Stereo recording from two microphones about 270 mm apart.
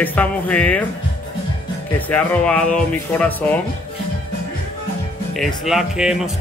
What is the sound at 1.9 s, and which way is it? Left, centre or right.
Speech, centre.